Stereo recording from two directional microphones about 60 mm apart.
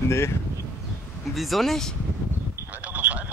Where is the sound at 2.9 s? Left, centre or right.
Right.